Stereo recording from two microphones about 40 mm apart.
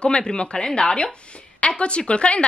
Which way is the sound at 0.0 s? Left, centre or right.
Left.